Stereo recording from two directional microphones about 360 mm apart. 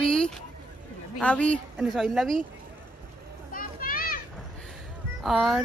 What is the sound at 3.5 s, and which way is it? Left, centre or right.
Children playing, left.